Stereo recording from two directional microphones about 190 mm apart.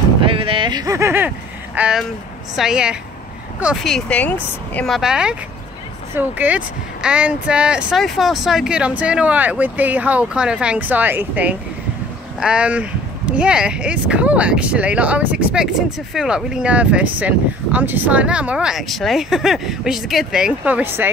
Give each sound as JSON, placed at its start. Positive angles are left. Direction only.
{"t": 0.2, "sound": "speech", "side_deg": -30}